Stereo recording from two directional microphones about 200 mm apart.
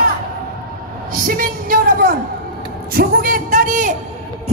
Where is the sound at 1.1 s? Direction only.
45° right (ahead or behind).